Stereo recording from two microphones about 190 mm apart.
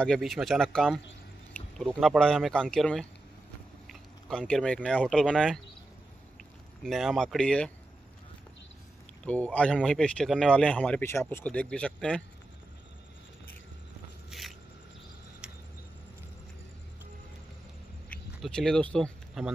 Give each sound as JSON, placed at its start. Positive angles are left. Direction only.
{"t": 0.0, "sound": "speech", "side_deg": 0}
{"t": 6.8, "sound": "speech", "side_deg": 0}
{"t": 9.2, "sound": "speech", "side_deg": 5}
{"t": 15.4, "sound": "tick-tock", "side_deg": -5}
{"t": 18.1, "sound": "a sound", "side_deg": 5}